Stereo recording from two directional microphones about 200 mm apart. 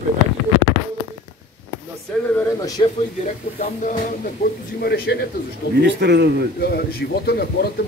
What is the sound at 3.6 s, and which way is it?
Speech, 40° left (ahead or behind).